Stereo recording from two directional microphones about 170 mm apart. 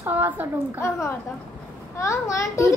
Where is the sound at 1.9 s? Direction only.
15° left (ahead or behind).